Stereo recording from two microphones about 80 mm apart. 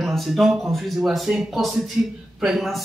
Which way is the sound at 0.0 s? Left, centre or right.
Centre.